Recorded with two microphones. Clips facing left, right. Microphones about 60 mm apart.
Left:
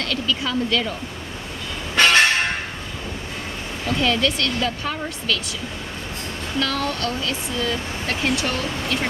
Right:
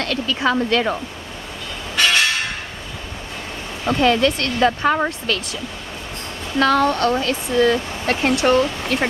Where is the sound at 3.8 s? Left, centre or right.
Right.